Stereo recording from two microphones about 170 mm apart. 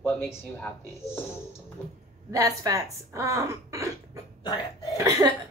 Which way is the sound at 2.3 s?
20° right (ahead or behind).